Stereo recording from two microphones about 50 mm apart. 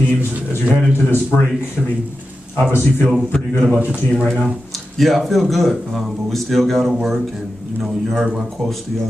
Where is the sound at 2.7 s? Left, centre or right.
Left.